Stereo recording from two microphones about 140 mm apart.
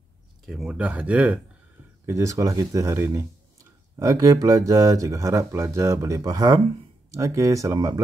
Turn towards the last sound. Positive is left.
turn(degrees=-20)  # may be behind; listen again after turning